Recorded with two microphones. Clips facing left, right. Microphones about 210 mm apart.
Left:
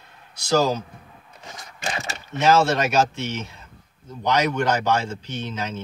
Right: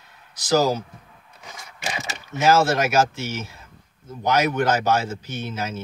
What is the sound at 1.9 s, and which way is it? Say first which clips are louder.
A man's voice: even; 15° right (ahead or behind).